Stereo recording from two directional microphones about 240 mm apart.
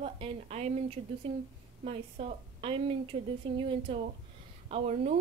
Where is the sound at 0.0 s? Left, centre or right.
Right.